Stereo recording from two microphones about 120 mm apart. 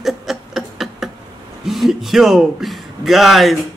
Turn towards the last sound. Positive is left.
turn(degrees=0)  # may be behind; listen again after turning